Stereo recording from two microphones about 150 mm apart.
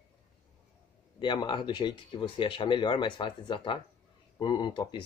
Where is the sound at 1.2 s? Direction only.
30° left (ahead or behind).